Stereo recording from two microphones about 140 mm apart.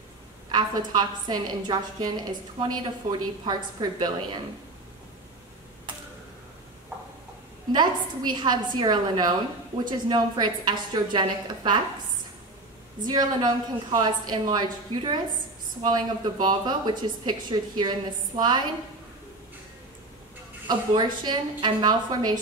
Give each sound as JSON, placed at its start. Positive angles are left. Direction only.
{"t": 0.5, "sound": "a woman's voice", "side_deg": -30}
{"t": 7.7, "sound": "a woman's voice", "side_deg": -30}
{"t": 13.0, "sound": "a woman's voice", "side_deg": -30}
{"t": 20.6, "sound": "a woman's voice", "side_deg": -30}